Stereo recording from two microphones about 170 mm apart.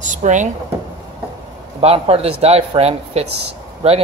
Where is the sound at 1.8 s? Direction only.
35° right (ahead or behind).